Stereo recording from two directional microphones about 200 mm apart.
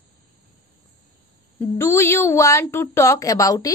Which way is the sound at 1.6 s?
10° left (ahead or behind).